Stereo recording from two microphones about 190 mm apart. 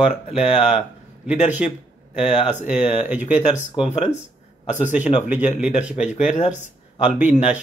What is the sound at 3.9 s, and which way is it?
A man's voice, 35° left (ahead or behind).